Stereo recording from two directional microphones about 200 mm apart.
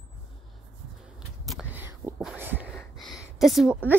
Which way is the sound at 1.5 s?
5° right (ahead or behind).